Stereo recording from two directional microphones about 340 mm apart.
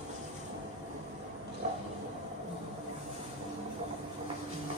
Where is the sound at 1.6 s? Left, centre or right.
Right.